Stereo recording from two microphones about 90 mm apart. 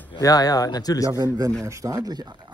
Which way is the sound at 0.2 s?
45° left (ahead or behind).